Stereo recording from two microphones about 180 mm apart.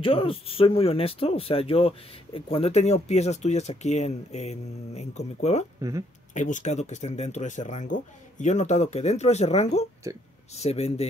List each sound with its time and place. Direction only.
0.0 s speech: 30° left (ahead or behind)
5.8 s speech: 20° right (ahead or behind)
6.3 s speech: 45° left (ahead or behind)